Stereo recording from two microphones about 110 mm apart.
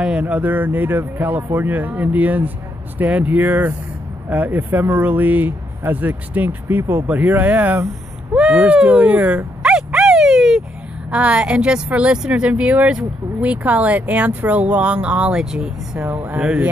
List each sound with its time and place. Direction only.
0.0 s speech: 10° right (ahead or behind)
8.3 s dog: 10° right (ahead or behind)
11.1 s speech: 10° right (ahead or behind)